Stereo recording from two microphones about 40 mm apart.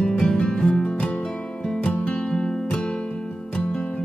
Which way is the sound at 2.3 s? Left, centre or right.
Left.